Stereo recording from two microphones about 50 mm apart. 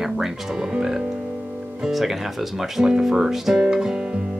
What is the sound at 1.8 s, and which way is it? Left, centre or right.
Speech, centre.